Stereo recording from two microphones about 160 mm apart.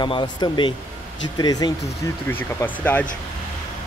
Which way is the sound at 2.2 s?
10° left (ahead or behind).